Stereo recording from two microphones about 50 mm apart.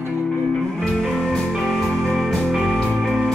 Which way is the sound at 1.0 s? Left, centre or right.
Centre.